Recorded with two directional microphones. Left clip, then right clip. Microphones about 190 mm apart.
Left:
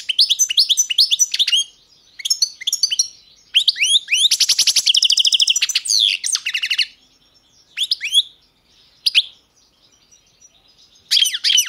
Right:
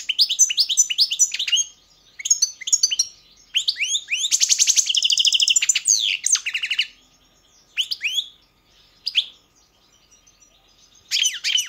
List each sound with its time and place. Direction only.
0.0 s bird: 15° left (ahead or behind)
3.5 s alarm: 20° left (ahead or behind)
7.7 s a sound: 15° left (ahead or behind)
11.1 s bird: 15° left (ahead or behind)